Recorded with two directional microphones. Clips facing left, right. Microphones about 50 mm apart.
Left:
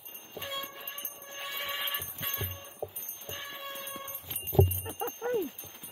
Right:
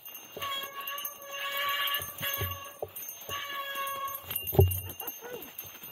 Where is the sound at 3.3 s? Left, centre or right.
Right.